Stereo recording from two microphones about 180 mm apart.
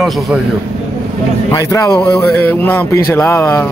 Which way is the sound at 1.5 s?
20° left (ahead or behind).